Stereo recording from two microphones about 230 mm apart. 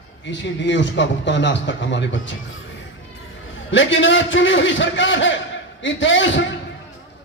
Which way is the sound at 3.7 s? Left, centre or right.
Left.